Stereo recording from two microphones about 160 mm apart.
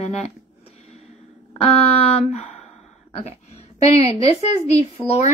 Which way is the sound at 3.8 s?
40° left (ahead or behind).